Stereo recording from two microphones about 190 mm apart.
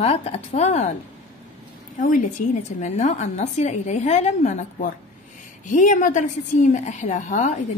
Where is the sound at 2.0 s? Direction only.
40° left (ahead or behind).